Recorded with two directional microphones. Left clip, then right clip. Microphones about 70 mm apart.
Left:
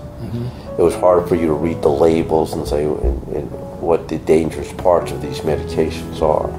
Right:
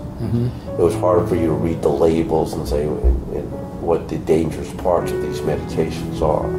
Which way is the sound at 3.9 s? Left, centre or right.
Left.